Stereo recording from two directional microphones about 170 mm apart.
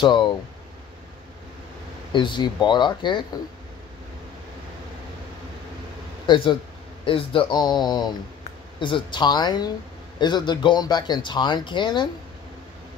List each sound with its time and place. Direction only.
0.0 s speech: 30° left (ahead or behind)
2.1 s speech: 30° left (ahead or behind)
6.2 s speech: 30° left (ahead or behind)